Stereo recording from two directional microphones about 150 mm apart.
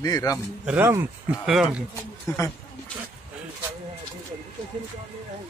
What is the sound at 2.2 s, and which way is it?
Speech, 20° left (ahead or behind).